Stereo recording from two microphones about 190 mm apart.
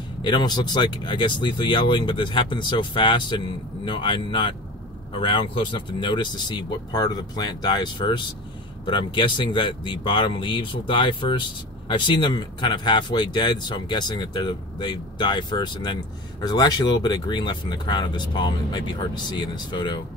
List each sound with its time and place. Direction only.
0.2 s speech: 25° left (ahead or behind)